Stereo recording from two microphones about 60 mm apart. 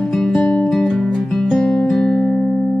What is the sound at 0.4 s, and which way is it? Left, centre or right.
Music, left.